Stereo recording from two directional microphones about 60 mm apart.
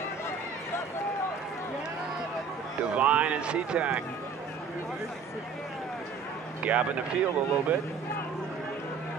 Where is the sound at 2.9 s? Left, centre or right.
Right.